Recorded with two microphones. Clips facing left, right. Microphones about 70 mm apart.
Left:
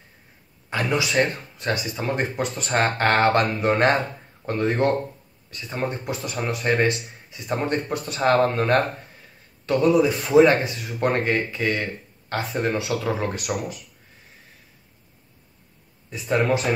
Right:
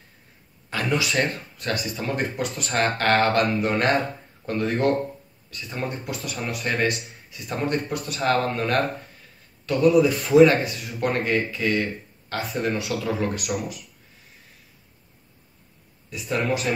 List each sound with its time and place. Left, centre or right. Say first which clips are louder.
0.7 s a man's voice: left 1 dB; centre
16.1 s a man's voice: left 4 dB; left